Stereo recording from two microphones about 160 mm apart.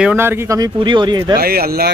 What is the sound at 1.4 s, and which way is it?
Speech, 70° right (ahead or behind).